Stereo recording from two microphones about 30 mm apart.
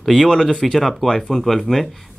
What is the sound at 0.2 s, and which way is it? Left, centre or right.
Speech, left.